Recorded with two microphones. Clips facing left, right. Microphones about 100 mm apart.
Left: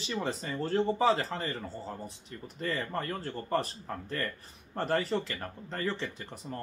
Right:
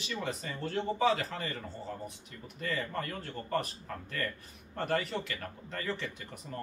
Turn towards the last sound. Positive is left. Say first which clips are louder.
# left 2 dB
turn(degrees=30)  # may be behind; listen again after turning